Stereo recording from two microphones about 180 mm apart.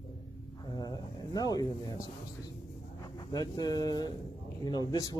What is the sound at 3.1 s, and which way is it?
A man's voice, 25° left (ahead or behind).